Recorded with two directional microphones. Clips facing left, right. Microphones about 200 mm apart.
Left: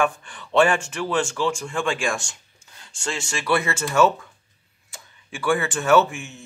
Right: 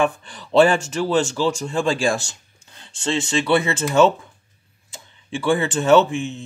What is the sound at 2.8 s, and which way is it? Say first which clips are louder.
Speech: right 7 dB; 25° right (ahead or behind).